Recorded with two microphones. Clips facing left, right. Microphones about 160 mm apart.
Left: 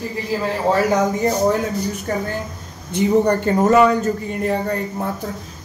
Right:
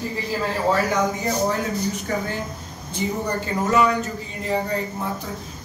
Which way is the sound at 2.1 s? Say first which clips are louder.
Left 4 dB; 45° left (ahead or behind).